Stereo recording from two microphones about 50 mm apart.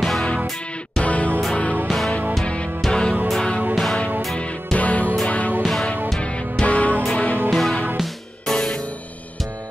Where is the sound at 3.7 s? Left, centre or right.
Centre.